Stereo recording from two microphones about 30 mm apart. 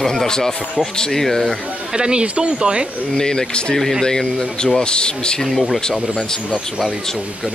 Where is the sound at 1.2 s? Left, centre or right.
Centre.